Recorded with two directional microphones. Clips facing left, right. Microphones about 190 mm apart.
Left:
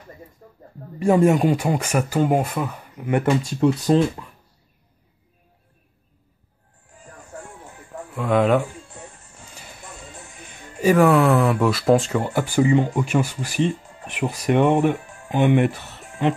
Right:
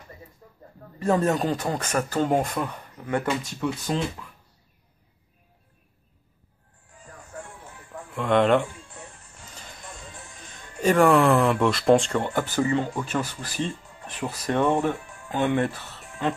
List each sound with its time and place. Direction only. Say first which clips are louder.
0.9 s speech: left 6 dB; 10° left (ahead or behind)
3.3 s speech: left 8 dB; 35° left (ahead or behind)
8.2 s speech: left 1 dB; 5° left (ahead or behind)
10.4 s speech: left 4 dB; 5° left (ahead or behind)